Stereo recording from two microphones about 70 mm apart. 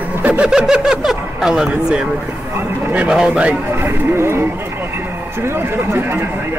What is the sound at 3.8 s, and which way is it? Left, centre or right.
A man's voice, right.